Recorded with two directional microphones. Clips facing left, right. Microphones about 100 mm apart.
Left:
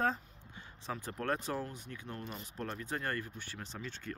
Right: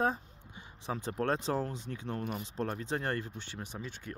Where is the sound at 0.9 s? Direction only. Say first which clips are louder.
Right 4 dB; 25° right (ahead or behind).